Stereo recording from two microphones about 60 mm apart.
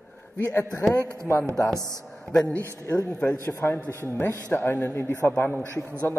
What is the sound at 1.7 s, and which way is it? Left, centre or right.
Speech, right.